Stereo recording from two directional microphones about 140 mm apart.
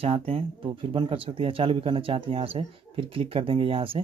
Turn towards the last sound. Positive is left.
turn(degrees=-40)  # may be behind; listen again after turning